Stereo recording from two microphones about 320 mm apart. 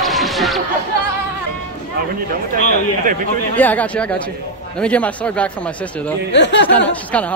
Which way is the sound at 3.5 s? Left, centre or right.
Centre.